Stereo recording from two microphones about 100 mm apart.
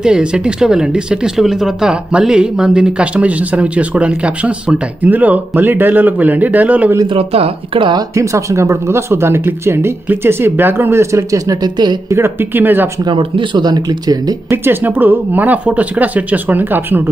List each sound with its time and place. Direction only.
0.0 s speech: 10° right (ahead or behind)
7.2 s speech: 70° right (ahead or behind)
8.2 s speech: 30° right (ahead or behind)
12.1 s speech: 20° right (ahead or behind)
13.1 s speech: 45° right (ahead or behind)
14.5 s speech: 20° right (ahead or behind)